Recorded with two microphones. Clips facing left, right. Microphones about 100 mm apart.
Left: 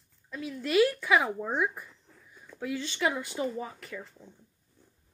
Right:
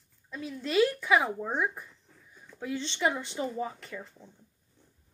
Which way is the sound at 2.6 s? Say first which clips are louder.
Left 1 dB; 25° right (ahead or behind).